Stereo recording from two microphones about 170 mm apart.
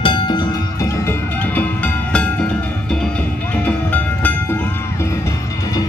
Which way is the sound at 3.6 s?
10° left (ahead or behind).